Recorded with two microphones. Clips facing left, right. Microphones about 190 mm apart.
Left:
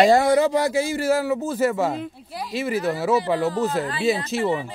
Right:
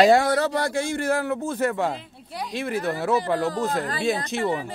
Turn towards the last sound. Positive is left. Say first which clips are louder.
# left 2 dB
turn(degrees=0)  # may be behind; listen again after turning